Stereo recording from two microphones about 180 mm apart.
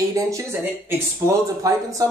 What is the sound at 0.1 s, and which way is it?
Speech, 15° right (ahead or behind).